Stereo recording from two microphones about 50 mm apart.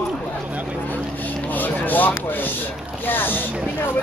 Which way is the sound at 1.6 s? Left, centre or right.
Left.